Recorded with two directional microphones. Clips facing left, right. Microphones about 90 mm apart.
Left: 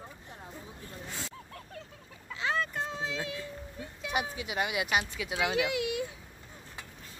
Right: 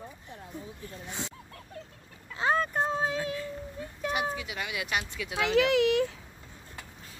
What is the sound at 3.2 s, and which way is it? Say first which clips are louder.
Cat: right 5 dB; 40° right (ahead or behind).